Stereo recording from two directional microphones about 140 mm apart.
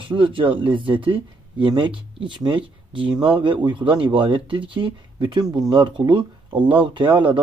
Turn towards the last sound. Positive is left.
turn(degrees=-35)  # may be behind; listen again after turning